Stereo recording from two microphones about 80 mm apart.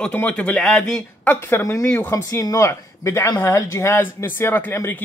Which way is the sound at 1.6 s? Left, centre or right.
Left.